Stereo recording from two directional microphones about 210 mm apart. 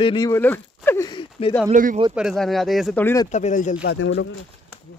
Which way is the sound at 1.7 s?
40° right (ahead or behind).